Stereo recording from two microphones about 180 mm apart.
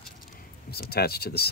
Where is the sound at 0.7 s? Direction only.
60° left (ahead or behind).